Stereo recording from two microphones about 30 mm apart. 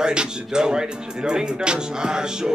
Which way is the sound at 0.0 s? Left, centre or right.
Right.